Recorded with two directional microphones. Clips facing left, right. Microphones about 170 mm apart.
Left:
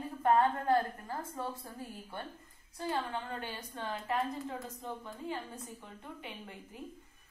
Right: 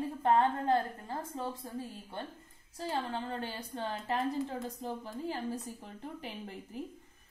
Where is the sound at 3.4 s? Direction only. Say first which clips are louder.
Right 3 dB; 30° right (ahead or behind).